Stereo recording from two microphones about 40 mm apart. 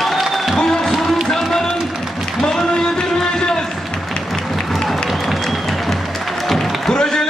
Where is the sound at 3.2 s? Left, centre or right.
Centre.